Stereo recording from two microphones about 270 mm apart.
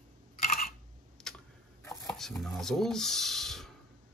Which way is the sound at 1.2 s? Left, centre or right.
Centre.